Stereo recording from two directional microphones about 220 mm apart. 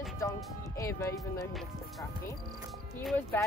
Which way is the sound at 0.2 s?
15° left (ahead or behind).